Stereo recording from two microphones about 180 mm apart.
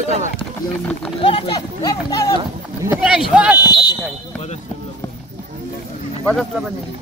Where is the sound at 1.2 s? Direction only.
30° left (ahead or behind).